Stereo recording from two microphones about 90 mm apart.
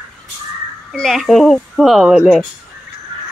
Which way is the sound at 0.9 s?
Centre (ahead or behind).